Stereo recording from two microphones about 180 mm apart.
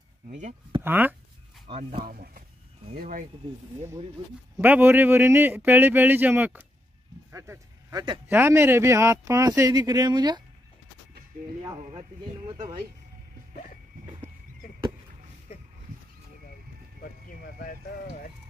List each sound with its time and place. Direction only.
0.3 s speech: 40° right (ahead or behind)
0.8 s speech: 10° right (ahead or behind)
1.7 s speech: 35° right (ahead or behind)
4.6 s speech: 10° right (ahead or behind)
8.3 s speech: 10° right (ahead or behind)